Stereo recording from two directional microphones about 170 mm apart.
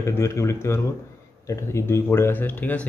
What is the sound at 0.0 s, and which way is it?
Speech, 15° left (ahead or behind).